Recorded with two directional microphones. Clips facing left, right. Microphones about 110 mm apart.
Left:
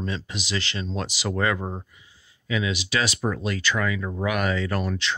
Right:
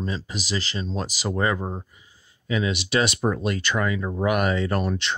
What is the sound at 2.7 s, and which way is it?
Speech, 55° right (ahead or behind).